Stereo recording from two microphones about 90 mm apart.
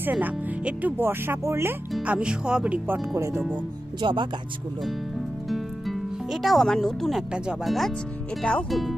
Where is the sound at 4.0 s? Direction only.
70° right (ahead or behind).